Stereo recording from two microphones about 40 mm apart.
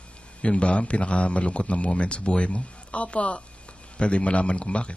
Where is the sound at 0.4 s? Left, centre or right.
Left.